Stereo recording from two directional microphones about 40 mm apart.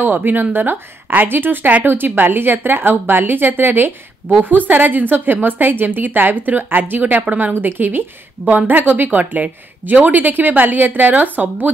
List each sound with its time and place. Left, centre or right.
0.0 s a woman's voice: right